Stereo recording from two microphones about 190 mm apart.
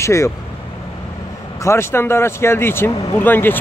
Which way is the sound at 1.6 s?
15° left (ahead or behind).